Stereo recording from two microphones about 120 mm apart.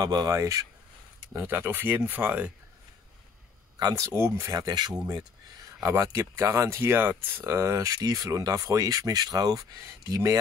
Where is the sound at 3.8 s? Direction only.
25° right (ahead or behind).